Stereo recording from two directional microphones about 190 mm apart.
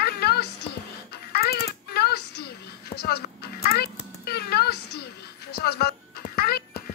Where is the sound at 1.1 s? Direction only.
55° left (ahead or behind).